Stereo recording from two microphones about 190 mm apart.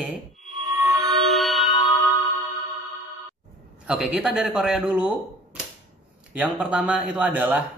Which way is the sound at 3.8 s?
5° right (ahead or behind).